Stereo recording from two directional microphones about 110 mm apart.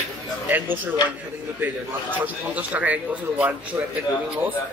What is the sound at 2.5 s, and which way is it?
Speech, 15° right (ahead or behind).